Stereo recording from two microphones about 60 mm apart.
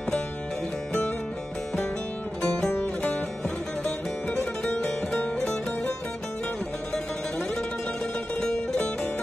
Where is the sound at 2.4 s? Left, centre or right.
Left.